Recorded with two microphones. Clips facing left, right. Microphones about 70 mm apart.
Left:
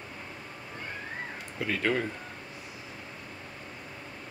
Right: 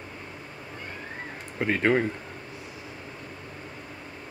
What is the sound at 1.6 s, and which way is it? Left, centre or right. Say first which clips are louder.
Speech: right 6 dB; right.